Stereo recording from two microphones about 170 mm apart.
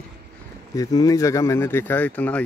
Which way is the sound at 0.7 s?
20° left (ahead or behind).